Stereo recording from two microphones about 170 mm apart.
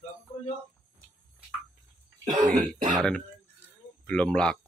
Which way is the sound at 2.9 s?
5° left (ahead or behind).